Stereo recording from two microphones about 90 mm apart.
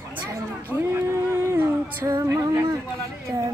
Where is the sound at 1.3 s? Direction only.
30° right (ahead or behind).